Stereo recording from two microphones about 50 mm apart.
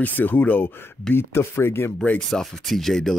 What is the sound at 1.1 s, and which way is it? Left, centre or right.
Speech, left.